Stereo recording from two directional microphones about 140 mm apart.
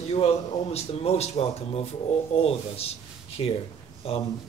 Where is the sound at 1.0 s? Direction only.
45° left (ahead or behind).